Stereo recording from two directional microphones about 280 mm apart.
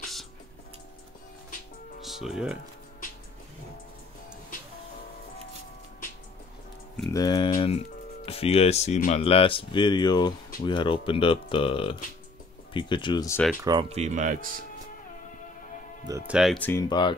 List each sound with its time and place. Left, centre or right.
0.0 s music: centre
2.0 s speech: centre
7.1 s speech: centre
13.7 s speech: centre
16.1 s speech: centre